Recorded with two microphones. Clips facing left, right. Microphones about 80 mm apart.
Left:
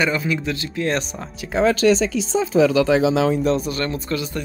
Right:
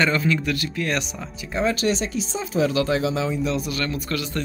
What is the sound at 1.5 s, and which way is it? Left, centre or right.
Speech, left.